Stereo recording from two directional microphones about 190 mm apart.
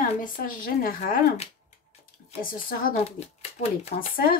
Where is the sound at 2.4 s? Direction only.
50° left (ahead or behind).